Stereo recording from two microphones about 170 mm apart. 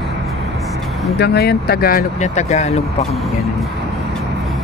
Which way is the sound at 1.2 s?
70° left (ahead or behind).